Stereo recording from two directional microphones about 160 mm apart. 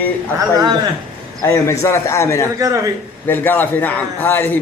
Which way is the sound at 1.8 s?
15° left (ahead or behind).